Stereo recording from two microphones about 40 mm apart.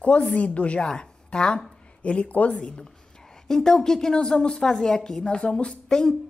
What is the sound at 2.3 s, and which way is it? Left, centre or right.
Speech, left.